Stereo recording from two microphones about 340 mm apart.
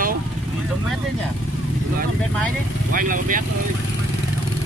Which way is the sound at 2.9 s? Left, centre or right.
Right.